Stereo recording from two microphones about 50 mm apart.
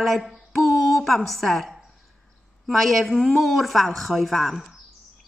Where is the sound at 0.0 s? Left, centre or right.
Centre.